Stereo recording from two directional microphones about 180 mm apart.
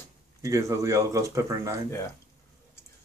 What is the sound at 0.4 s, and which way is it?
Speech, 15° right (ahead or behind).